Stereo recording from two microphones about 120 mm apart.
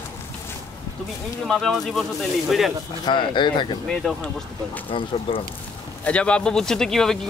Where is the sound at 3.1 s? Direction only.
40° left (ahead or behind).